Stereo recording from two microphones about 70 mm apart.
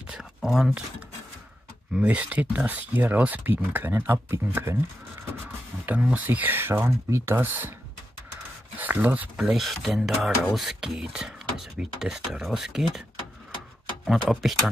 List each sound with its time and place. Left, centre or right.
0.1 s a sound: centre
0.5 s speech: centre
2.0 s speech: right
5.9 s speech: right
8.7 s speech: right
9.4 s speech: centre
14.0 s speech: centre